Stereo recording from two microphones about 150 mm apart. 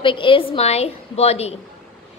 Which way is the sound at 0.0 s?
35° left (ahead or behind).